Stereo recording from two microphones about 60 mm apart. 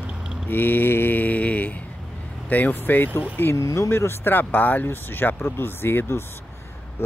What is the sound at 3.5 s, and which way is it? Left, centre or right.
Speech, left.